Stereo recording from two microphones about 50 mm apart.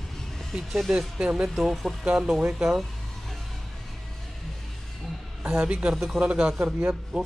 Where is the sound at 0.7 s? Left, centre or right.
Centre.